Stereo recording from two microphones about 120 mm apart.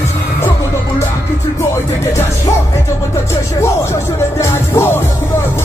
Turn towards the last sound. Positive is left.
turn(degrees=20)  # may be behind; listen again after turning